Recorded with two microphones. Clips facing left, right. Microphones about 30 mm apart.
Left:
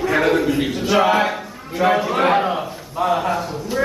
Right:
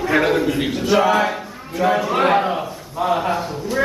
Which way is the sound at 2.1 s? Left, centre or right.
Centre.